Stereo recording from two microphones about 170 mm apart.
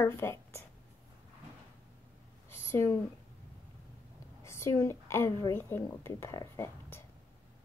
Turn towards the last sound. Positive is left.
turn(degrees=15)  # may be behind; listen again after turning